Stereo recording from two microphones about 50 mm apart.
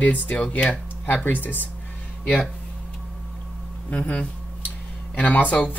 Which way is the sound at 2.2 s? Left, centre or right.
Centre.